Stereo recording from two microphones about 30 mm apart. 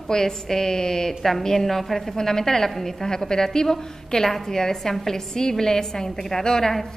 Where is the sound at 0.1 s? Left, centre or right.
Centre.